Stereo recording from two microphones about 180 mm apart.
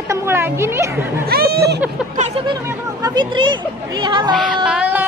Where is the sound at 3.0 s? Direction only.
25° right (ahead or behind).